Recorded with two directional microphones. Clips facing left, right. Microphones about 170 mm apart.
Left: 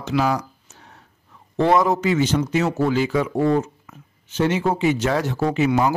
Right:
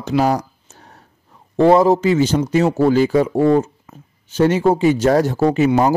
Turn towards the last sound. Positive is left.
turn(degrees=-40)  # may be behind; listen again after turning